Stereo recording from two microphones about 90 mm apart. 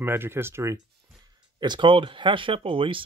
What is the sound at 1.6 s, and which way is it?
Speech, 60° right (ahead or behind).